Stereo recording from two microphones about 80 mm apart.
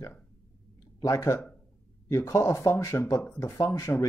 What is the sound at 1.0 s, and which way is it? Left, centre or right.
Speech, left.